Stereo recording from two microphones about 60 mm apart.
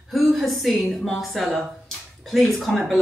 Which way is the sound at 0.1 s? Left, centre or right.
Centre.